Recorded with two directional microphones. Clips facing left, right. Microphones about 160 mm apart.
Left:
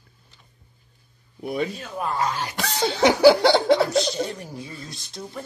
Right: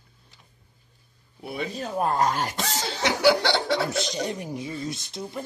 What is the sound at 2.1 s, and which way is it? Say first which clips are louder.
Speech: even; 45° right (ahead or behind).